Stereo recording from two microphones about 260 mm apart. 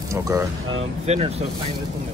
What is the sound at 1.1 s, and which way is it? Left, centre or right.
Speech, right.